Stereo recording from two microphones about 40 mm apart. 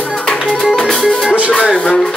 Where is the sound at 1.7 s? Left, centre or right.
Left.